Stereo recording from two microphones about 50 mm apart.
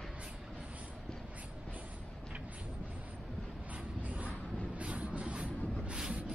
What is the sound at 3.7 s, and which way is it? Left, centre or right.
Vehicle, right.